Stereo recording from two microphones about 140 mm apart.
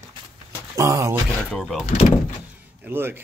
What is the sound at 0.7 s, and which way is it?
Speech, 25° right (ahead or behind).